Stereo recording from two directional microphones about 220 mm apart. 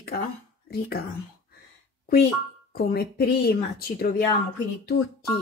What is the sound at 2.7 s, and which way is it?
A woman's voice, 45° left (ahead or behind).